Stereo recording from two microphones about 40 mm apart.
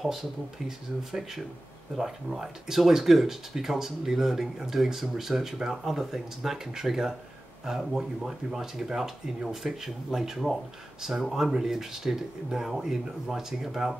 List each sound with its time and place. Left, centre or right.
0.0 s speech: centre
11.2 s speech: centre